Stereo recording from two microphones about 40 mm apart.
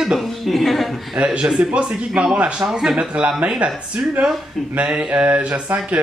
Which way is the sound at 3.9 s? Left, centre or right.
Right.